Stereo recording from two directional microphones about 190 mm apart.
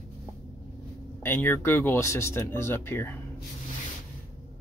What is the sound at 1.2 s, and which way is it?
Speech, 10° left (ahead or behind).